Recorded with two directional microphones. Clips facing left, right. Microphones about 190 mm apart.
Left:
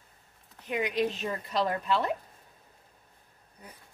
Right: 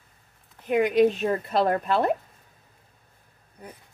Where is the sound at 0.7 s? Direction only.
50° right (ahead or behind).